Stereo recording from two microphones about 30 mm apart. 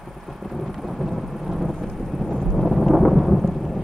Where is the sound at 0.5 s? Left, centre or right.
Centre.